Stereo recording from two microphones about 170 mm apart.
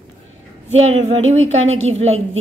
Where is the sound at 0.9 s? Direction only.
40° right (ahead or behind).